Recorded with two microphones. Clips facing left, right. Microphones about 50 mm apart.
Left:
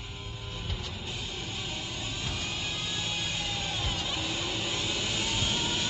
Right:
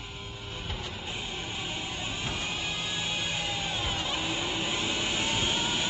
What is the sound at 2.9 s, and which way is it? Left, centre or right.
Music, right.